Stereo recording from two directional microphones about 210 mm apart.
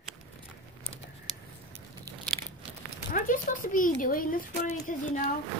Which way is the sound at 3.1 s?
40° left (ahead or behind).